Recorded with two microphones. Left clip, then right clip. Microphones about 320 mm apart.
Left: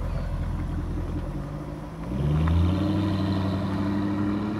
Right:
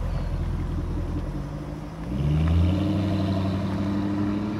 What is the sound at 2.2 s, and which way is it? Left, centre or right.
Vehicle, centre.